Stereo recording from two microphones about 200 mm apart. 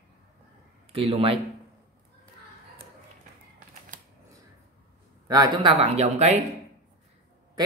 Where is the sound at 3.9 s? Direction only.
40° right (ahead or behind).